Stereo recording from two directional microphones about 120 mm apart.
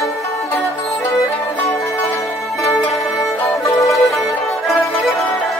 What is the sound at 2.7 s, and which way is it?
Music, centre (ahead or behind).